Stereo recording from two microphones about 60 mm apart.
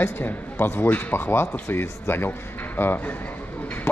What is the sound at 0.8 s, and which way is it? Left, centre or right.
Speech, left.